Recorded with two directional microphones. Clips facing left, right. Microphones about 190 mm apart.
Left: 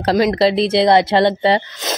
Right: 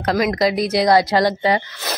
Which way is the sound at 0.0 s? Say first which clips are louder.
Left 4 dB; 30° left (ahead or behind).